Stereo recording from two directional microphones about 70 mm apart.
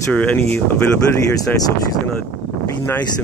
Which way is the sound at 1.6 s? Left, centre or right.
Left.